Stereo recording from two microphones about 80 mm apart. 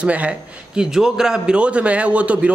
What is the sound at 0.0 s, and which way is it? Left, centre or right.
A man's voice, centre.